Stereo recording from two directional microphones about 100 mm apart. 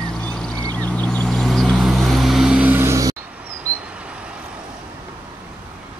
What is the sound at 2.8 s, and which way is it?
Music, 35° right (ahead or behind).